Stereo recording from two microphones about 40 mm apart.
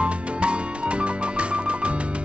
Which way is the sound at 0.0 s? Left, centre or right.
Right.